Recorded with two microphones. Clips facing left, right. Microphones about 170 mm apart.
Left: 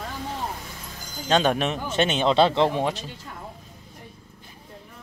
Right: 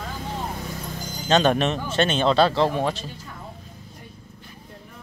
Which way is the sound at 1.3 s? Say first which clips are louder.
Right 2 dB; 10° left (ahead or behind).